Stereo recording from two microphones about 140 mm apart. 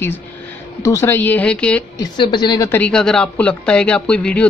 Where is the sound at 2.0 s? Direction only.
30° left (ahead or behind).